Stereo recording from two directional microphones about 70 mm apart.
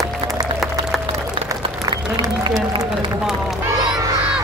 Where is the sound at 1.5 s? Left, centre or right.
Right.